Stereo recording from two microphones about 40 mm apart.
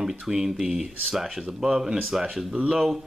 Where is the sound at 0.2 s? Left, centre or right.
Centre.